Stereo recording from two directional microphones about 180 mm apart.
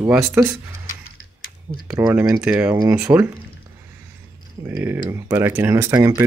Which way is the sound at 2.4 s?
5° right (ahead or behind).